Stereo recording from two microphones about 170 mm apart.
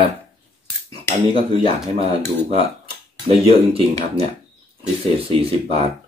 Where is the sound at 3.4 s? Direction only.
35° right (ahead or behind).